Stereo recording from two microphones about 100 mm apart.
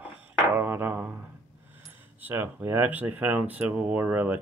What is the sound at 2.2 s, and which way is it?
Speech, 20° right (ahead or behind).